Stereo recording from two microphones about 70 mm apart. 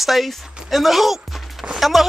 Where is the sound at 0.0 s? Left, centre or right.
Centre.